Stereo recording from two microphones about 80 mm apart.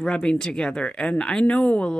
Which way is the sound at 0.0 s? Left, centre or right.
Centre.